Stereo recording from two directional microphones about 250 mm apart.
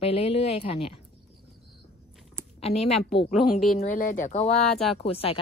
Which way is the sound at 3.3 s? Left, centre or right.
Centre.